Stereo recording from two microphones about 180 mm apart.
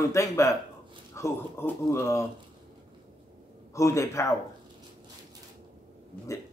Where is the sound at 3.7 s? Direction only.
15° left (ahead or behind).